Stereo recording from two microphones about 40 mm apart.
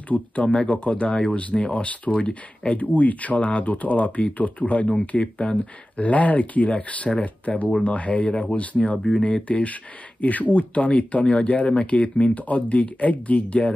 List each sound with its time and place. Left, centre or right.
0.5 s speech: left
2.8 s speech: left
8.3 s speech: centre
8.5 s speech: left